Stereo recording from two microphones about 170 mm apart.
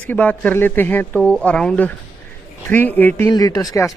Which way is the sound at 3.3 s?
20° left (ahead or behind).